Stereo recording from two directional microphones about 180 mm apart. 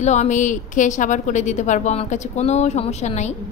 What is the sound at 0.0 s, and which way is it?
A woman's voice, 40° left (ahead or behind).